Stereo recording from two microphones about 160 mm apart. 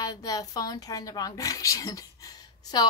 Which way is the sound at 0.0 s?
20° left (ahead or behind).